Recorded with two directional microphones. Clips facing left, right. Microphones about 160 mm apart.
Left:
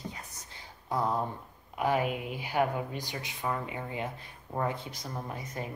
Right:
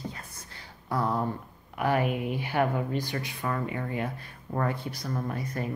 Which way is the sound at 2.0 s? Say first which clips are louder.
Right 4 dB; 55° right (ahead or behind).